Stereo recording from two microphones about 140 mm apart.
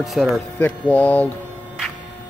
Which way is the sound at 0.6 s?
10° left (ahead or behind).